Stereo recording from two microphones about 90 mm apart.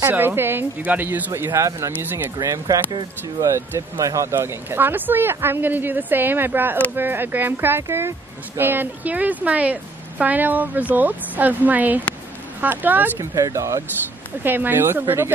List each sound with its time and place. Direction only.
0.1 s a woman's voice: 25° right (ahead or behind)
2.3 s a woman's voice: 35° right (ahead or behind); by 13.1 s 20° right (ahead or behind)
13.2 s speech: 35° right (ahead or behind)
14.4 s a woman's voice: 20° right (ahead or behind)